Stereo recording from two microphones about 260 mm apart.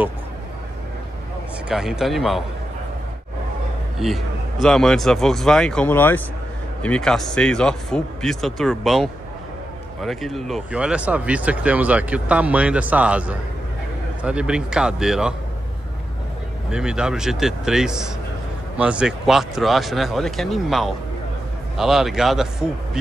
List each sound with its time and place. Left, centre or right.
1.7 s speech: centre
4.0 s speech: centre
16.7 s speech: centre